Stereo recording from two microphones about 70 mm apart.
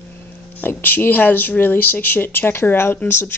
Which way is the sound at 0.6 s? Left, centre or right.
Left.